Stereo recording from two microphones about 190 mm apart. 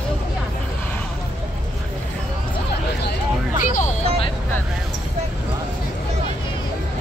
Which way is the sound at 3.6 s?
45° left (ahead or behind).